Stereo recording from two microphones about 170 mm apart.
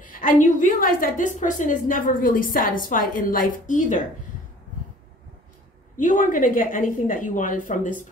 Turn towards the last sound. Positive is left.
turn(degrees=50)  # may be behind; listen again after turning